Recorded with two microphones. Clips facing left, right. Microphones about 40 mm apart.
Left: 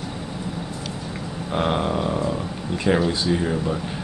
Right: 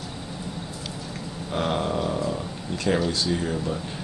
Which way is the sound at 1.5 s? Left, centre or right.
Centre.